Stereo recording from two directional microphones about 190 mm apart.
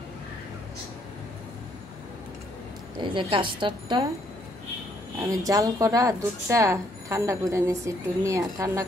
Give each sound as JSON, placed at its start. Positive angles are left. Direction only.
{"t": 3.0, "sound": "a woman's voice", "side_deg": -25}
{"t": 5.2, "sound": "speech", "side_deg": -15}